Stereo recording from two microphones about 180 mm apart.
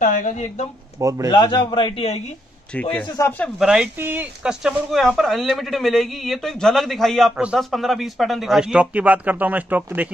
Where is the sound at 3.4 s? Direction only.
5° right (ahead or behind).